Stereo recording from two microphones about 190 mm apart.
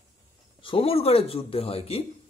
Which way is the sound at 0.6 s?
30° left (ahead or behind).